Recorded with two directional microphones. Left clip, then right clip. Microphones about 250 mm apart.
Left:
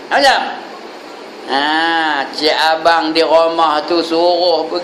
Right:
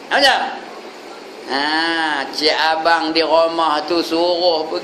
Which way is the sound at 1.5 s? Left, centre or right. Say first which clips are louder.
Left 4 dB; centre.